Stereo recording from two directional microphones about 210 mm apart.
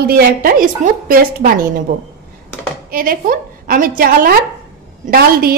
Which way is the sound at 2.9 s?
45° right (ahead or behind).